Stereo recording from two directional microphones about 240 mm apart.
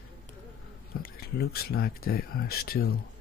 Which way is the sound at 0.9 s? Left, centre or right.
Left.